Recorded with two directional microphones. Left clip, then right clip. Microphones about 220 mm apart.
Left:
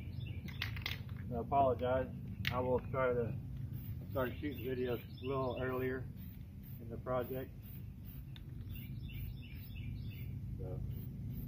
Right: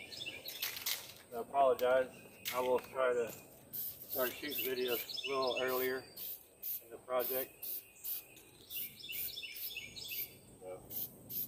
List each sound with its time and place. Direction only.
1.3 s speech: 10° right (ahead or behind)
7.1 s speech: 15° right (ahead or behind)